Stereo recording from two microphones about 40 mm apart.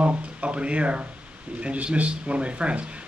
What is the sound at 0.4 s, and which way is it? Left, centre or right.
Speech, right.